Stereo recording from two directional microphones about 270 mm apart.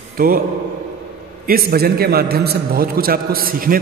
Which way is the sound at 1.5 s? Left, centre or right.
Right.